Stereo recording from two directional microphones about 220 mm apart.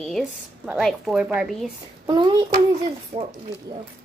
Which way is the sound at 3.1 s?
35° right (ahead or behind).